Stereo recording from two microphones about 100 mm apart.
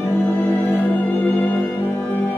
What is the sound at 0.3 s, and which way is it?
Music, 20° left (ahead or behind).